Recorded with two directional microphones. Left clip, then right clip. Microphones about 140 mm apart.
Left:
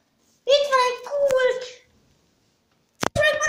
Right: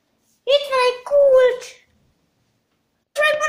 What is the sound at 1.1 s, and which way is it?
Speech, 90° right.